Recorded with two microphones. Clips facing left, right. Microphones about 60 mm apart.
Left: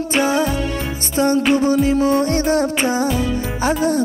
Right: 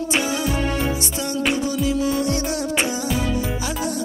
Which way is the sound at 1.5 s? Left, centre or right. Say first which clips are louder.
Left 7 dB; left.